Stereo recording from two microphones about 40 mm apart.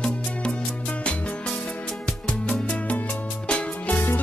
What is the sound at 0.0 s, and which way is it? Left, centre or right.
Music, left.